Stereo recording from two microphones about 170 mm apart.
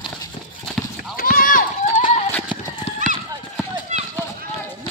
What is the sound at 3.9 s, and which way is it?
Run, 45° right (ahead or behind).